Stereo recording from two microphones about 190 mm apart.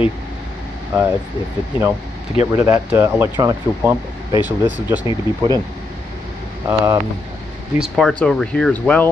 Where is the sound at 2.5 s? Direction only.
10° right (ahead or behind).